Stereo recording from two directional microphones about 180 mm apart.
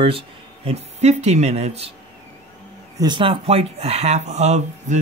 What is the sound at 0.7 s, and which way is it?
A man's voice, 35° right (ahead or behind).